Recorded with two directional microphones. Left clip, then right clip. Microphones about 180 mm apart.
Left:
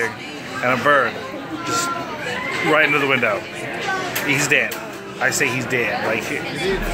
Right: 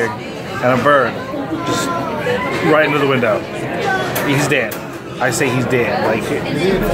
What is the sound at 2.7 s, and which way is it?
Speech, 10° left (ahead or behind).